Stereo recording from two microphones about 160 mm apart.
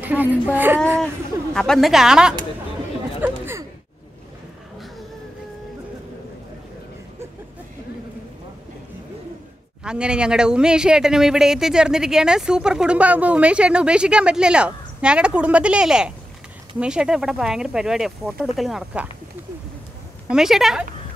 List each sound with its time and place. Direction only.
0.0 s speech: 10° right (ahead or behind)
1.5 s speech: 5° left (ahead or behind)
3.2 s chatter: 15° right (ahead or behind)
9.8 s speech: 5° right (ahead or behind)
20.2 s speech: 5° right (ahead or behind)